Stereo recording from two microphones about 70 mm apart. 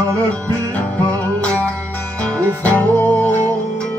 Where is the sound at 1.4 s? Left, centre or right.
Centre.